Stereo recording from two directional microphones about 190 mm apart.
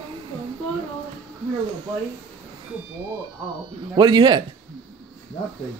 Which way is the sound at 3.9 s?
20° right (ahead or behind).